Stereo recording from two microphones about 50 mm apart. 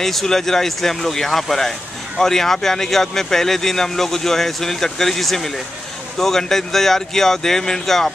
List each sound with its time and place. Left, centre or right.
0.0 s speech: centre